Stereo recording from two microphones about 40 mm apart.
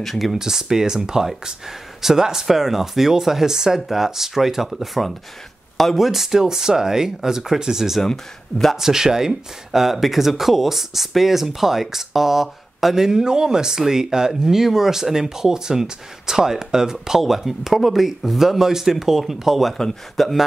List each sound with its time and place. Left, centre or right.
0.0 s speech: centre
0.4 s speech: centre
8.0 s speech: centre
8.7 s speech: centre